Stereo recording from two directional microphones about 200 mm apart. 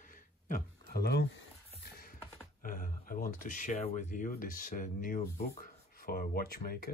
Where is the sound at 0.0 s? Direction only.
45° left (ahead or behind).